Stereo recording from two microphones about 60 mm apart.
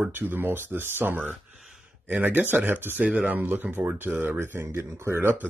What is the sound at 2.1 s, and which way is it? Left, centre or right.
Speech, right.